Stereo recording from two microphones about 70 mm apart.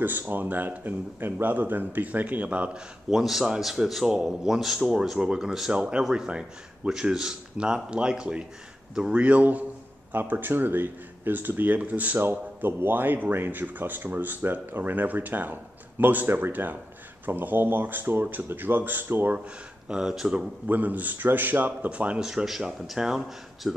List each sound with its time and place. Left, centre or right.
0.0 s speech: right
3.1 s a man's voice: centre; by 19.4 s right
19.9 s a man's voice: centre
20.6 s speech: right; by 23.7 s centre